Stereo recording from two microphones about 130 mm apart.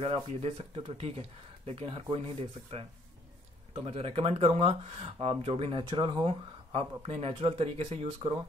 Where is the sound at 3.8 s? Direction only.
50° right (ahead or behind).